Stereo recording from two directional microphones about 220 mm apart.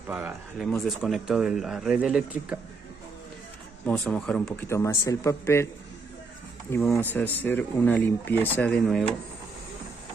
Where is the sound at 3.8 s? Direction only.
5° left (ahead or behind).